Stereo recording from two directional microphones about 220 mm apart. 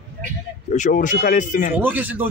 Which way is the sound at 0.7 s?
35° left (ahead or behind).